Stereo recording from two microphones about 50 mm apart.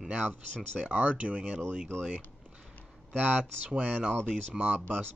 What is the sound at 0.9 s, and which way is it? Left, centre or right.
Speech, right.